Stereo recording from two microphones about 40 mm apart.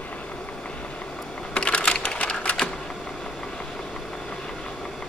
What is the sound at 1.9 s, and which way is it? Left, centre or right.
Sewing machine, left.